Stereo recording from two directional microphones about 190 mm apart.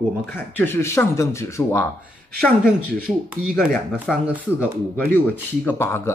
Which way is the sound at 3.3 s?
5° right (ahead or behind).